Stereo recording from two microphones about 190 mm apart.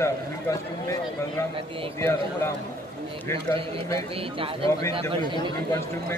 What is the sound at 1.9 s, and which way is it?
Speech, 15° left (ahead or behind).